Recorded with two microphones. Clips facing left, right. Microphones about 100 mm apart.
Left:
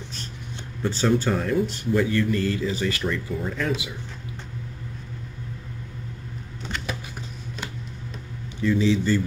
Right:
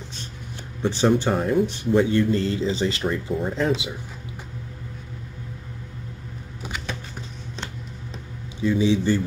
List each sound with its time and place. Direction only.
0.8 s speech: 20° right (ahead or behind)
8.6 s speech: 20° right (ahead or behind)